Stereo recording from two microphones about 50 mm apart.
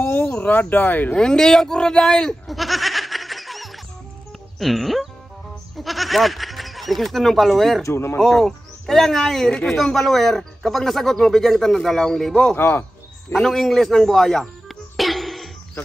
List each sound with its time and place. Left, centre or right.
0.0 s a sound: left
1.1 s a man's voice: centre
7.8 s speech: left
8.2 s speech: centre
12.5 s speech: left
13.3 s a man's voice: centre
14.4 s music: centre